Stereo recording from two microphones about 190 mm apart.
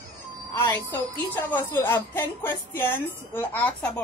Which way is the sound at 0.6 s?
10° left (ahead or behind).